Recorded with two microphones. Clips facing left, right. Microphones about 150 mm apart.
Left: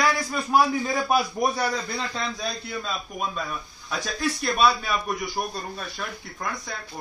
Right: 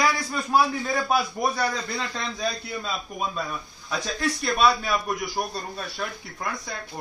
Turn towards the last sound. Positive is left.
turn(degrees=0)  # may be behind; listen again after turning